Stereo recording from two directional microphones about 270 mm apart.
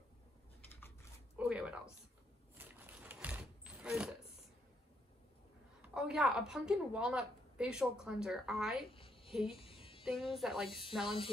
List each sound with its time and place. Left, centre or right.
1.3 s zipper: centre
2.5 s a sound: centre
5.8 s a woman's voice: centre
8.8 s a sound: centre
9.3 s speech: centre
9.6 s music: centre
10.3 s speech: centre